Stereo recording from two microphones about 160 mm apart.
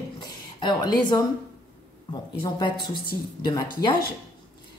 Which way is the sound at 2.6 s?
30° left (ahead or behind).